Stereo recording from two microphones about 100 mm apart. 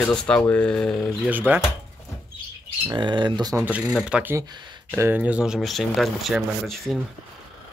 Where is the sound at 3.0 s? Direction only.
50° right (ahead or behind).